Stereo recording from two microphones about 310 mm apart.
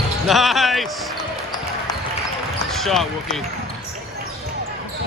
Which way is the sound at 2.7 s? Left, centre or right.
Centre.